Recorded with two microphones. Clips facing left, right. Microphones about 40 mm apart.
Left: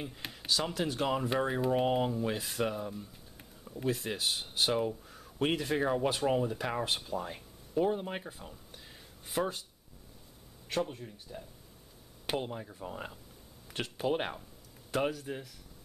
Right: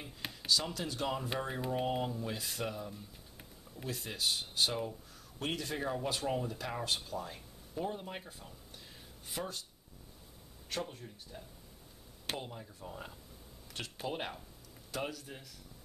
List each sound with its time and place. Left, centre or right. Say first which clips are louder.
0.5 s speech: left 3 dB; centre
10.7 s speech: left 6 dB; centre
12.3 s speech: left 6 dB; left